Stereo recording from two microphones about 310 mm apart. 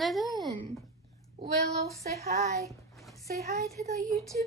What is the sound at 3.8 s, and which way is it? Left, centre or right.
Speech, right.